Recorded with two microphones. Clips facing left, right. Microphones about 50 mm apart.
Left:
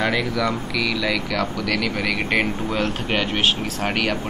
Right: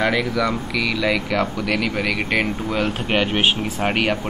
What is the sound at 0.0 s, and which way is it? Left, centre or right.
Speech, centre.